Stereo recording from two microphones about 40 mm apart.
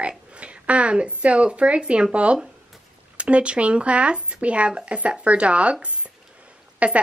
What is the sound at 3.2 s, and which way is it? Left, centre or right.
Speech, right.